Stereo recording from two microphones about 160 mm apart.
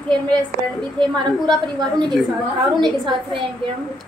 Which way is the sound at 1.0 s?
25° right (ahead or behind).